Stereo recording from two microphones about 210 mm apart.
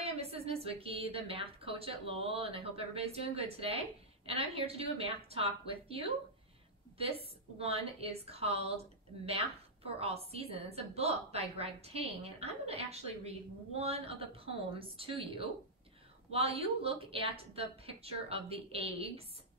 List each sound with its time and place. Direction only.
0.0 s a woman's voice: 30° right (ahead or behind)
9.8 s a woman's voice: 30° right (ahead or behind)